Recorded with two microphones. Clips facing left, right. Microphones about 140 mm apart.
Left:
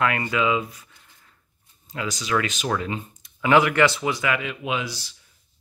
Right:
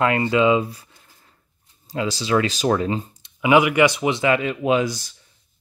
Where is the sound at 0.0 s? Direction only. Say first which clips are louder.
Right 5 dB; 25° right (ahead or behind).